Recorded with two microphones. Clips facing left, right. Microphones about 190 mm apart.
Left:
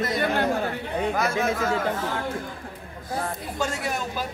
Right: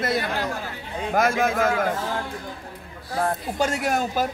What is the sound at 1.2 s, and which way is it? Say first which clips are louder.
Speech: right 3 dB; 50° right (ahead or behind).